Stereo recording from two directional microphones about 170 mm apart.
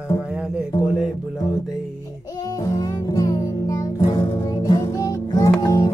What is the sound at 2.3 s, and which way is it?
Music, 20° left (ahead or behind).